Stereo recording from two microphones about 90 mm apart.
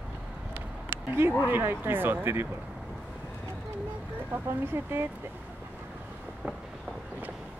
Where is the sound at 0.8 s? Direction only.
25° right (ahead or behind).